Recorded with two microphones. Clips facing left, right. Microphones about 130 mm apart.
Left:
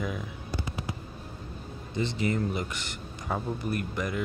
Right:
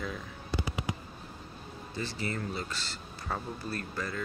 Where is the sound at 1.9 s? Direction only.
20° left (ahead or behind).